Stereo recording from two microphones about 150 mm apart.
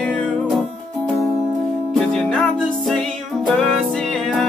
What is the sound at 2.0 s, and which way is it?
Music, centre (ahead or behind).